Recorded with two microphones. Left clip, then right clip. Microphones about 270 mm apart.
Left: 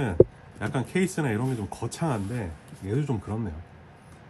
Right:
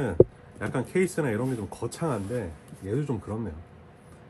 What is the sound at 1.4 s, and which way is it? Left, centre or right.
Speech, centre.